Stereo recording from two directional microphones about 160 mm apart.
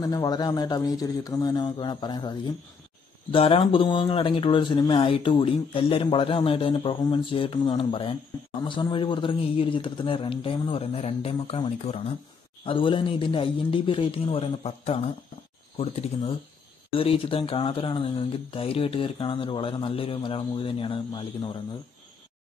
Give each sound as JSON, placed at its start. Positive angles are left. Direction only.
{"t": 0.0, "sound": "a man's voice", "side_deg": 25}
{"t": 16.9, "sound": "speech", "side_deg": 35}